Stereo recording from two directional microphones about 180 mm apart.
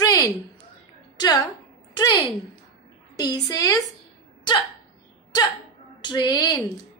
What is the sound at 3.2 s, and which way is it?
Speech, 20° left (ahead or behind).